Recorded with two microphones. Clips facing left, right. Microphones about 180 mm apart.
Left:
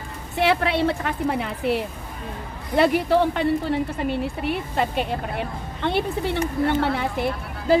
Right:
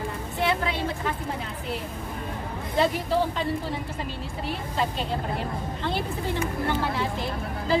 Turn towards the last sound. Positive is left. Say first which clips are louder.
# left 6 dB
turn(degrees=60)  # may be behind; listen again after turning